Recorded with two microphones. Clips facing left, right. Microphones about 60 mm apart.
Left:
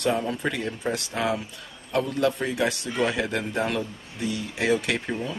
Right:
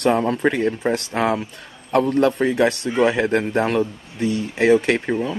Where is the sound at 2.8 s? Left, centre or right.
Right.